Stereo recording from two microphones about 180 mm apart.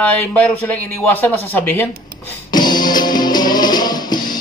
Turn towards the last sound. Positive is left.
turn(degrees=25)  # may be behind; listen again after turning